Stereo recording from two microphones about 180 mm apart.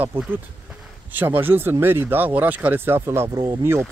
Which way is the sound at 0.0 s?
10° right (ahead or behind).